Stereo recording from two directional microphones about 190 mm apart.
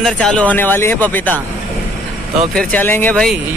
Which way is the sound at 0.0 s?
5° left (ahead or behind).